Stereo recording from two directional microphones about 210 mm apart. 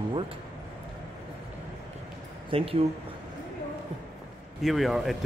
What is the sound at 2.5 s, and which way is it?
Speech, 25° right (ahead or behind).